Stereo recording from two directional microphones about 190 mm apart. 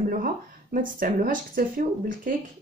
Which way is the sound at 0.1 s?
50° right (ahead or behind).